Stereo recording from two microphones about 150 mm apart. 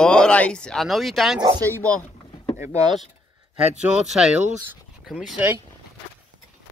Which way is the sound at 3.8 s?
5° right (ahead or behind).